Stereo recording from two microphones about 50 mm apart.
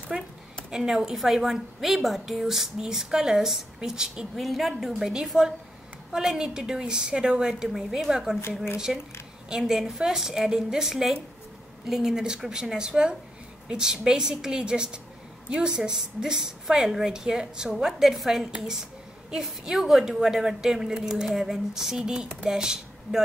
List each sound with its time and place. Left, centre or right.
0.1 s a woman's voice: centre
4.4 s a woman's voice: centre